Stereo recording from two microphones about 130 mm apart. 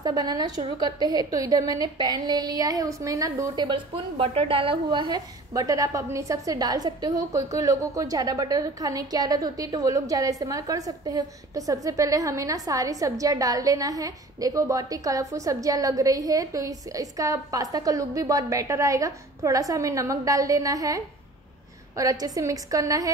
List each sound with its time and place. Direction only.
0.0 s a woman's voice: 30° right (ahead or behind)